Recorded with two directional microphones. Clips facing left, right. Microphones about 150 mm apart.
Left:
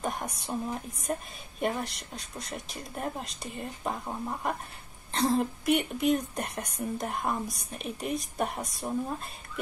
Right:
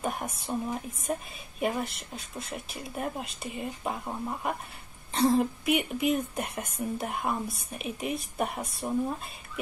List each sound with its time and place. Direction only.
0.0 s a woman's voice: 5° right (ahead or behind)